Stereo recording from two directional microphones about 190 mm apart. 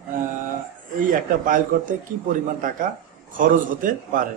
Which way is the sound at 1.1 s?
45° right (ahead or behind).